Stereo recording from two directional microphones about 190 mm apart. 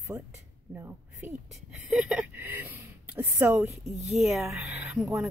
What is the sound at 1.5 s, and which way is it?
A woman's voice, centre (ahead or behind).